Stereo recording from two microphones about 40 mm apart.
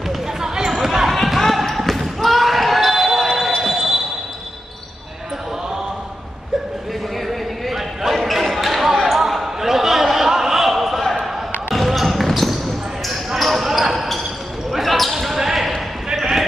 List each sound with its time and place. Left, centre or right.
0.1 s basketball bounce: centre
7.2 s basketball bounce: centre